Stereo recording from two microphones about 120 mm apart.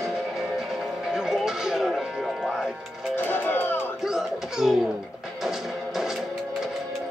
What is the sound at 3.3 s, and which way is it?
Music, 15° left (ahead or behind).